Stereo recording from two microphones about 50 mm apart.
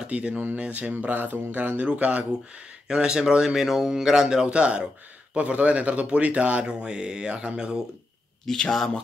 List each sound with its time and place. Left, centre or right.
0.0 s speech: right
0.4 s speech: right
2.9 s a man's voice: centre
8.5 s speech: centre